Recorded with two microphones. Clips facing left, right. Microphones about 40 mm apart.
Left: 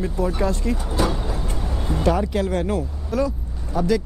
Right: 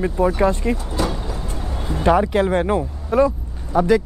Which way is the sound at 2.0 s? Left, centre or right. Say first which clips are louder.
Right 5 dB; right.